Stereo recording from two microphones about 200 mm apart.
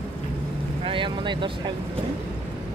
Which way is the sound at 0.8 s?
25° right (ahead or behind).